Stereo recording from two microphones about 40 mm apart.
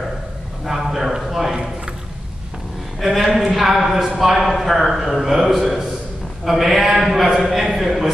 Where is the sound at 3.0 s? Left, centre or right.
Centre.